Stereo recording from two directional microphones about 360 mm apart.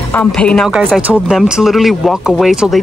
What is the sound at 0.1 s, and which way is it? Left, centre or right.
Speech, centre.